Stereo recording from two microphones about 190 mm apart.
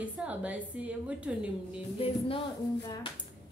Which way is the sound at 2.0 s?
30° left (ahead or behind).